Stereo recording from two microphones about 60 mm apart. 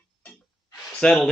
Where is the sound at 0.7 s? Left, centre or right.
Centre.